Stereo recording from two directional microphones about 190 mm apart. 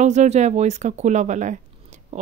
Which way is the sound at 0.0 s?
40° right (ahead or behind).